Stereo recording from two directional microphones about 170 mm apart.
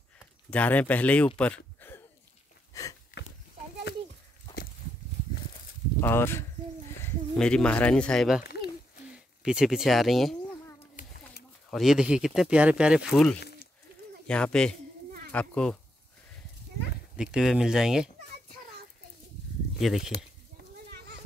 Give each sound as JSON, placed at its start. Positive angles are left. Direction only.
{"t": 0.5, "sound": "speech", "side_deg": 10}
{"t": 2.7, "sound": "a sound", "side_deg": 20}
{"t": 5.9, "sound": "speech", "side_deg": 15}
{"t": 11.7, "sound": "speech", "side_deg": 0}
{"t": 13.4, "sound": "a sound", "side_deg": 70}
{"t": 14.2, "sound": "speech", "side_deg": 5}
{"t": 17.2, "sound": "speech", "side_deg": -5}
{"t": 19.8, "sound": "speech", "side_deg": 0}